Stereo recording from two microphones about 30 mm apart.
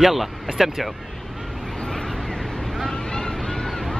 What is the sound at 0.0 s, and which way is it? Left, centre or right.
Speech, centre.